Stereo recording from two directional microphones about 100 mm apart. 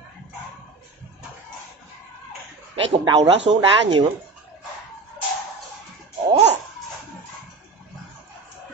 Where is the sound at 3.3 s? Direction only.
65° right (ahead or behind).